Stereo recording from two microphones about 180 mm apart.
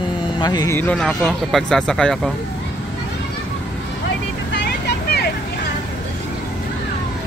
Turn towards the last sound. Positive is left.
turn(degrees=65)  # may be behind; listen again after turning